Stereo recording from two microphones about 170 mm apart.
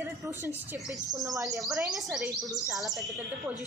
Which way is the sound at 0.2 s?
10° right (ahead or behind).